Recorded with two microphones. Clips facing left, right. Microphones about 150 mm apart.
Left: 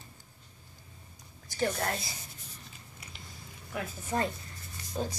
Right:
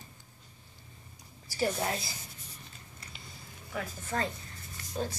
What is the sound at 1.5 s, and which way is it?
Speech, 5° right (ahead or behind).